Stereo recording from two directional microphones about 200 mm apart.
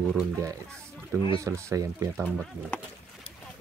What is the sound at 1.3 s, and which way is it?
Speech, 15° right (ahead or behind).